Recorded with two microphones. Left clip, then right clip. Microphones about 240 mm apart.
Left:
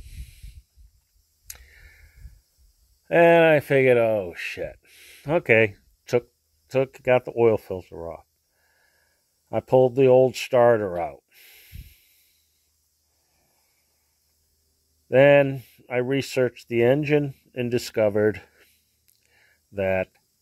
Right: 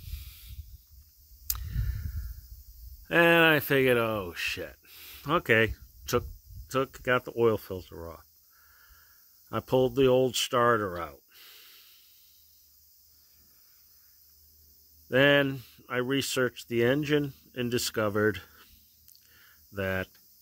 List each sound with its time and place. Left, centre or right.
0.0 s hiss: centre
1.5 s a sound: centre
3.1 s speech: centre
6.7 s speech: centre
7.9 s a sound: centre
9.8 s speech: centre
15.0 s speech: centre
15.8 s a sound: centre
16.2 s speech: centre
19.7 s speech: centre